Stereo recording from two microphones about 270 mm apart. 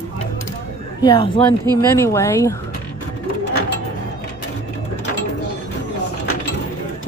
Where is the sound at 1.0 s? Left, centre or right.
Centre.